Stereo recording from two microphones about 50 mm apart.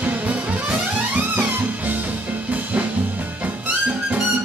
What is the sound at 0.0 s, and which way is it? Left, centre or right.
Music, right.